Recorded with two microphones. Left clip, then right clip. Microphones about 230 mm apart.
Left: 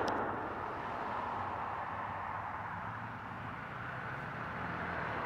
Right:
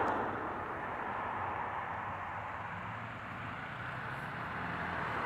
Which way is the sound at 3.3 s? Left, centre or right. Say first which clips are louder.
Right 1 dB; right.